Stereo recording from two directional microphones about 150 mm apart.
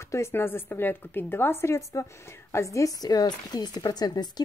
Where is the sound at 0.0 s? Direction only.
20° left (ahead or behind).